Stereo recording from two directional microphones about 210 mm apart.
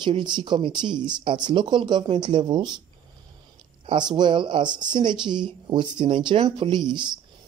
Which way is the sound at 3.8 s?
20° right (ahead or behind).